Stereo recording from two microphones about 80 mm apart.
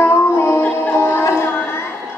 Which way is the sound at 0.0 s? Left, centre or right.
Left.